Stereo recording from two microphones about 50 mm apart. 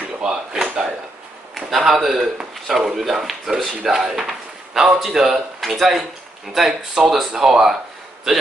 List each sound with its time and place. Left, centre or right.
0.2 s drawer open or close: centre
1.7 s a sound: centre
2.0 s speech: centre